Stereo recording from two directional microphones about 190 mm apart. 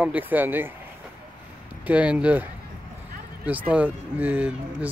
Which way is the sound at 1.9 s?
5° right (ahead or behind).